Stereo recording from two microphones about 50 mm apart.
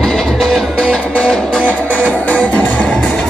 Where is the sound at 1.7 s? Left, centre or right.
Left.